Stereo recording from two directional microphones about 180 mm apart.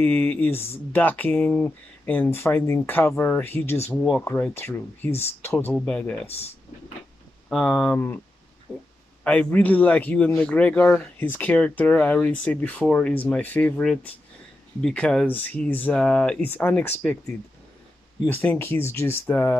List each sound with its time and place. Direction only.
0.0 s a man's voice: 10° left (ahead or behind)
6.2 s speech: 35° left (ahead or behind)
7.4 s speech: 5° left (ahead or behind)
9.2 s a man's voice: 5° left (ahead or behind)
18.2 s a man's voice: 10° left (ahead or behind)